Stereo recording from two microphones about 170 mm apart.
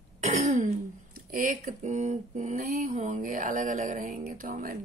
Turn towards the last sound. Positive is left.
turn(degrees=-55)  # may be behind; listen again after turning